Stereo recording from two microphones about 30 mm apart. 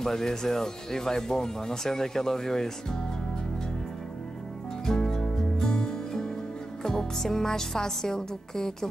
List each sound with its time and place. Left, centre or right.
0.0 s speech: centre
4.8 s music: centre
6.8 s speech: centre